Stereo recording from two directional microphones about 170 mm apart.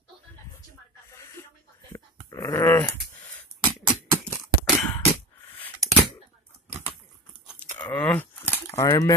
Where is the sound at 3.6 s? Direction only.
15° right (ahead or behind).